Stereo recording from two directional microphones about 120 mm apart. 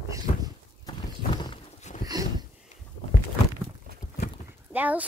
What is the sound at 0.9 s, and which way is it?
Clip-clop, 40° left (ahead or behind).